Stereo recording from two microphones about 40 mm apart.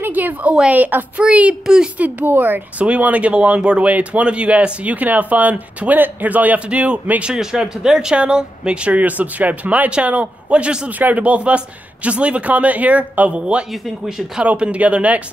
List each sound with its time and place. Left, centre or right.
0.0 s a sound: right
0.7 s speech: right
1.2 s speech: right
2.0 s speech: right
3.0 s speech: right
7.3 s speech: centre
8.9 s speech: right
10.0 s speech: right
11.0 s speech: right
14.0 s speech: centre
14.4 s speech: right